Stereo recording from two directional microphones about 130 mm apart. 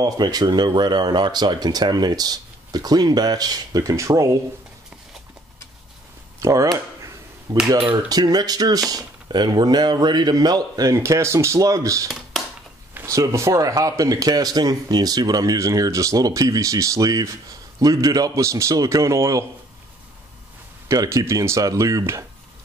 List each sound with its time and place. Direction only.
0.0 s speech: 30° right (ahead or behind)
6.4 s speech: 25° right (ahead or behind)
12.1 s a sound: centre (ahead or behind)
12.9 s speech: 25° right (ahead or behind)
20.9 s speech: 25° right (ahead or behind)